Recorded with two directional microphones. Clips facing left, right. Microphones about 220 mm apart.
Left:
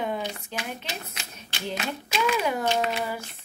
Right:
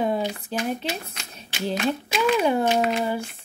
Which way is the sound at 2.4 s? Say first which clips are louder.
Right 6 dB; 30° right (ahead or behind).